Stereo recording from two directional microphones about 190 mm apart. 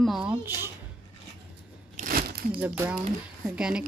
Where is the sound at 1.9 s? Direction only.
50° right (ahead or behind).